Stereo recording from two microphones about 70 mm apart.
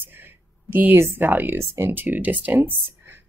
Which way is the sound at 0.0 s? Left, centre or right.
Right.